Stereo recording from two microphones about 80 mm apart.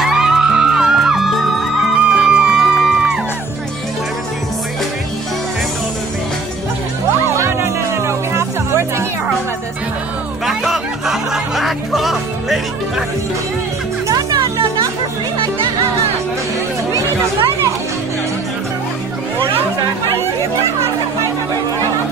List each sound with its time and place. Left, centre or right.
0.0 s music: centre
2.0 s music: centre
7.2 s music: right
10.4 s music: centre
14.0 s music: right